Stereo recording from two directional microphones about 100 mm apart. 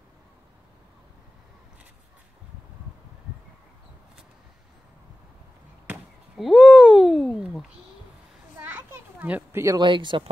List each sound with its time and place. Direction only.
6.3 s a sound: 5° right (ahead or behind)
8.5 s children playing: 20° right (ahead or behind)
9.8 s speech: 50° right (ahead or behind)